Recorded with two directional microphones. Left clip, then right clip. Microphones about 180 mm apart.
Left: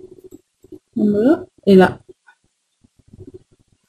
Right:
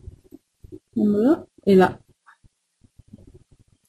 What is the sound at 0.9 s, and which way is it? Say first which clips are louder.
Speech: left 4 dB; centre (ahead or behind).